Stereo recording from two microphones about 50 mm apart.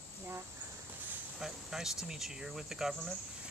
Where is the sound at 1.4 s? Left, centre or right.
Centre.